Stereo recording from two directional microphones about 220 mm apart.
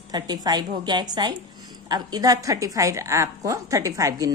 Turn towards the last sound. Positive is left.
turn(degrees=-15)  # may be behind; listen again after turning